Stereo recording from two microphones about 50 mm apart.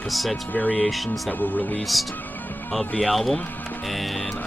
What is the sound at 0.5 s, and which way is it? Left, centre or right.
Speech, left.